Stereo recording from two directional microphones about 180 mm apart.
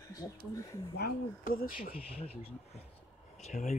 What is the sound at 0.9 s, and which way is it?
Speech, 60° left (ahead or behind).